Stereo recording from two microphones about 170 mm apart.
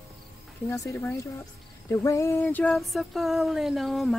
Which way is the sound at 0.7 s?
15° left (ahead or behind).